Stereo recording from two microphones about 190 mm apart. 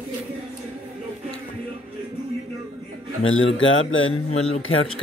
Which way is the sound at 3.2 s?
90° left.